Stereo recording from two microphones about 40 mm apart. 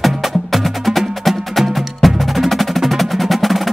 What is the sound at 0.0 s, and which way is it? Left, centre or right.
Wood block, centre.